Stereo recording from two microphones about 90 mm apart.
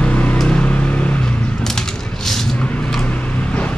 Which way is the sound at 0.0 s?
15° left (ahead or behind).